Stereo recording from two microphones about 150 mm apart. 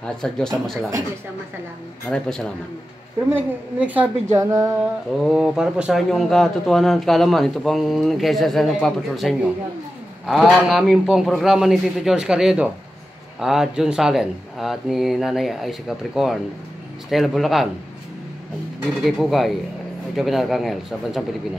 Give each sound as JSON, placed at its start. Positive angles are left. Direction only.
{"t": 0.0, "sound": "speech", "side_deg": 5}
{"t": 2.0, "sound": "speech", "side_deg": 5}
{"t": 3.3, "sound": "a woman's voice", "side_deg": -10}
{"t": 5.2, "sound": "speech", "side_deg": -5}
{"t": 19.0, "sound": "speech", "side_deg": 0}